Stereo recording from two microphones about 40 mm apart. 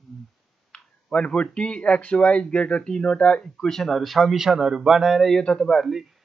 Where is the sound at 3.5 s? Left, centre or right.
Centre.